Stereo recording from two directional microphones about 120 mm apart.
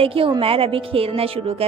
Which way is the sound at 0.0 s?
50° right (ahead or behind).